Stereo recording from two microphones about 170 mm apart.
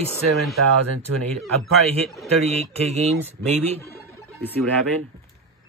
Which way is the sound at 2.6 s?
40° right (ahead or behind).